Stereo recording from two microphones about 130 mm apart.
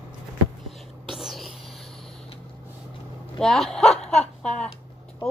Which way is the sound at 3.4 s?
5° left (ahead or behind).